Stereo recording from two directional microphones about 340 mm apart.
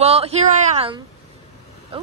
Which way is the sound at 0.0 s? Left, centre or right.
Centre.